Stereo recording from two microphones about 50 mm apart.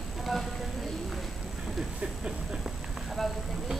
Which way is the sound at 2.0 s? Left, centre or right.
Centre.